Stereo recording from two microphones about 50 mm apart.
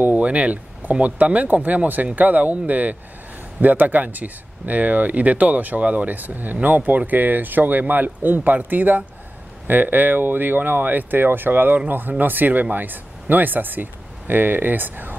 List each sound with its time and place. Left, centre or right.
0.0 s speech: right